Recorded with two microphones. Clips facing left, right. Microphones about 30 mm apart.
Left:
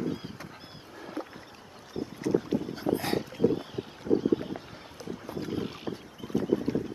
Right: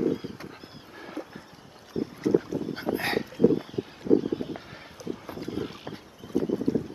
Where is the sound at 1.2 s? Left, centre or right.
Left.